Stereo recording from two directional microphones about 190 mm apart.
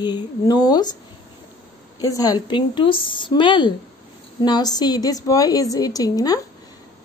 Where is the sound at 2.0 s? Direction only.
20° left (ahead or behind).